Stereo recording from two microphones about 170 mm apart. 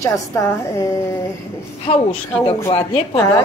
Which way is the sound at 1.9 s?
40° left (ahead or behind).